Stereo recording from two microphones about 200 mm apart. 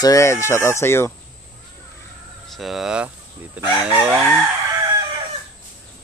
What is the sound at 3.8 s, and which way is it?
Chicken, 5° right (ahead or behind).